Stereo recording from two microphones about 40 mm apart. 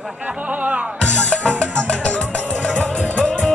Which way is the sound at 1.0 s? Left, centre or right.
Left.